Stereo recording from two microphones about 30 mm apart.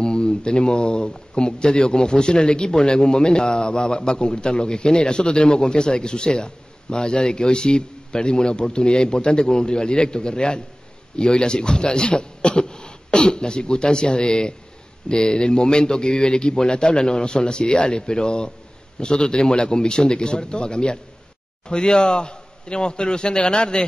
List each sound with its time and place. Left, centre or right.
0.0 s a man's voice: left